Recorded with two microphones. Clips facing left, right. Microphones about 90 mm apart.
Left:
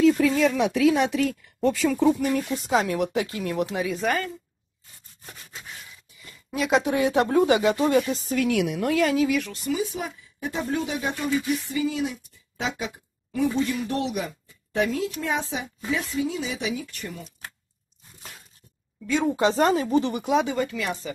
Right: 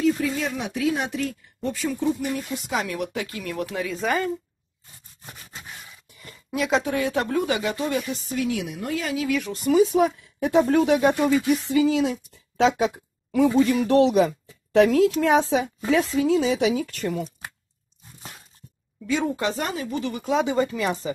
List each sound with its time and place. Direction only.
0.0 s speech: 90° left
2.5 s speech: 30° left (ahead or behind); by 4.0 s 15° left (ahead or behind)
6.5 s speech: 5° left (ahead or behind)
7.0 s speech: 25° left (ahead or behind)
8.4 s a woman's voice: 80° left
9.5 s speech: 40° right (ahead or behind)
9.8 s a woman's voice: 70° right (ahead or behind); by 17.1 s 90° right
19.0 s speech: centre (ahead or behind)
19.5 s speech: 35° left (ahead or behind)
20.5 s speech: 30° right (ahead or behind)